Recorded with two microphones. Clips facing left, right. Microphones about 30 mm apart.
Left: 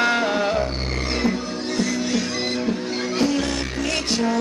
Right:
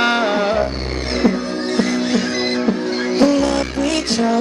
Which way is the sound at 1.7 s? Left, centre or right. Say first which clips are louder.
Right 5 dB; right.